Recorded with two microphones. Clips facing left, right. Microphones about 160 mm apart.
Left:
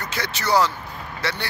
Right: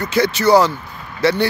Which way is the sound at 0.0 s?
10° right (ahead or behind).